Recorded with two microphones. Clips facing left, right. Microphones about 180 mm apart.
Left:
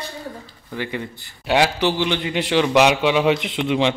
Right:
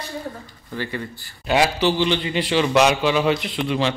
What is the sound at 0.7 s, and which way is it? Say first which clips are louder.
A man's voice: left 1 dB; 15° left (ahead or behind).